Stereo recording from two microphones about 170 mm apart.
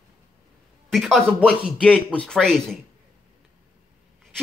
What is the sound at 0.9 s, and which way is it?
Speech, centre (ahead or behind).